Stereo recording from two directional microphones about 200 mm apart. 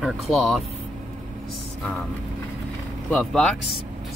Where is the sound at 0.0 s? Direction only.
Centre (ahead or behind).